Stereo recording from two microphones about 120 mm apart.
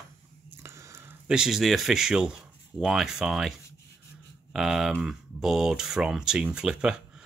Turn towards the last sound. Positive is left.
turn(degrees=-5)  # may be behind; listen again after turning